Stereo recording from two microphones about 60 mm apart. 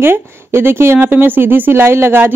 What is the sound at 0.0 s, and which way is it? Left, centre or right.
Speech, right.